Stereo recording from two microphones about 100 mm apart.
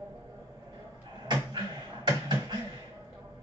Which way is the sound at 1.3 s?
45° right (ahead or behind).